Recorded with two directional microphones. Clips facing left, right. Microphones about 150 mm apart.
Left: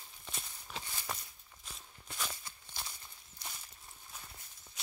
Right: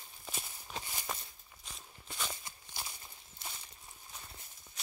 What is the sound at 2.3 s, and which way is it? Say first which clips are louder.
Walk: right 2 dB; 20° right (ahead or behind).